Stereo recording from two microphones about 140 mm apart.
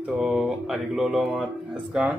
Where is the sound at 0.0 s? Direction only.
Centre (ahead or behind).